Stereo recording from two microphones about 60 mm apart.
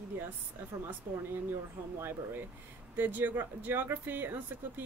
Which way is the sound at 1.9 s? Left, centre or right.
Right.